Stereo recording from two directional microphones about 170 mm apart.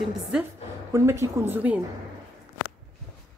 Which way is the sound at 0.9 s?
15° right (ahead or behind).